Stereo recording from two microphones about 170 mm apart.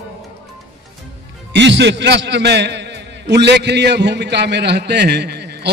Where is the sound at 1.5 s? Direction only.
90° right.